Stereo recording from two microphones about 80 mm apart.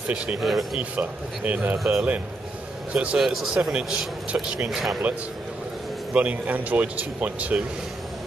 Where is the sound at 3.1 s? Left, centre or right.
Centre.